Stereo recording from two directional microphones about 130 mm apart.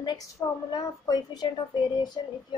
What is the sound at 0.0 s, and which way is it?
A woman's voice, 30° left (ahead or behind).